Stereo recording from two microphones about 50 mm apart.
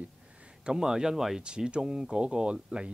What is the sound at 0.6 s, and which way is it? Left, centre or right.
Speech, centre.